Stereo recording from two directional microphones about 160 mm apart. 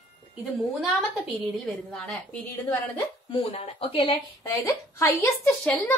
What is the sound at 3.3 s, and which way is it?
Speech, 35° left (ahead or behind).